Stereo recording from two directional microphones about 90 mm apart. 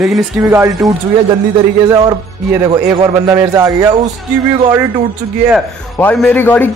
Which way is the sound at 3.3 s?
40° right (ahead or behind).